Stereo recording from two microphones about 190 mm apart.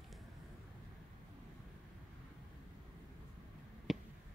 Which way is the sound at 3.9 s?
Centre (ahead or behind).